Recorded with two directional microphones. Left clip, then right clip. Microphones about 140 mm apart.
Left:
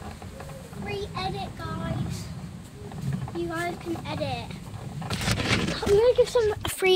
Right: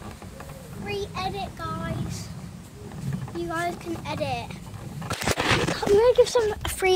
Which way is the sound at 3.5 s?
35° right (ahead or behind).